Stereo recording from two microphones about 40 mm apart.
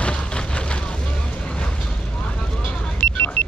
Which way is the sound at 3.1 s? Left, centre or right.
Left.